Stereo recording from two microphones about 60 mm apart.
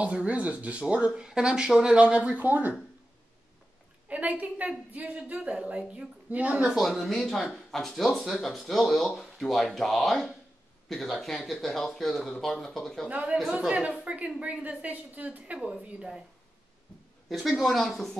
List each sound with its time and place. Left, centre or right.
0.0 s speech: centre
4.1 s speech: right
6.9 s speech: centre
13.1 s speech: right
17.3 s speech: centre